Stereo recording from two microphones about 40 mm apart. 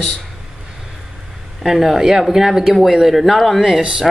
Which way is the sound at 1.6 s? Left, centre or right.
Centre.